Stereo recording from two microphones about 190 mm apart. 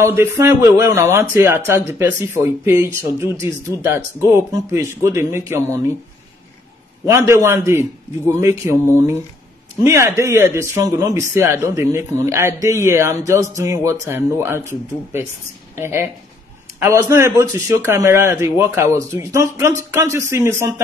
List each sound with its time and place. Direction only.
0.0 s speech: 15° right (ahead or behind)
7.1 s speech: 15° right (ahead or behind)
15.7 s speech: 15° right (ahead or behind)